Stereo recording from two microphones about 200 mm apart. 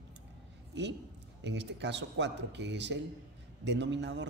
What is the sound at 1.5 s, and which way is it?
A man's voice, 60° right (ahead or behind).